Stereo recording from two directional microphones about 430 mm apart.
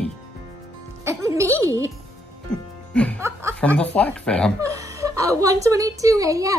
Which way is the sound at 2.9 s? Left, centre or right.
Centre.